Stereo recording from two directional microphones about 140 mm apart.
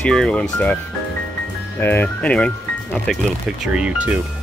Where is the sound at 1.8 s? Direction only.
15° left (ahead or behind).